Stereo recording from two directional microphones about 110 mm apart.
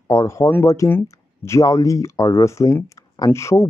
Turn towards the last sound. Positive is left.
turn(degrees=25)  # may be behind; listen again after turning